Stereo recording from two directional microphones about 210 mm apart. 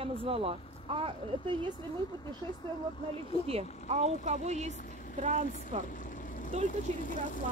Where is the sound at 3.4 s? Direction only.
30° right (ahead or behind).